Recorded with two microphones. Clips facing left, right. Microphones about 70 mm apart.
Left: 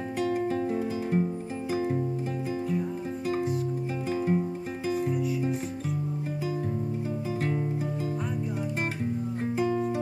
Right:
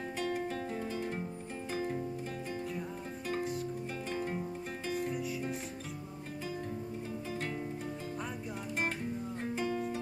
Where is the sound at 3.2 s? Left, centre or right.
Centre.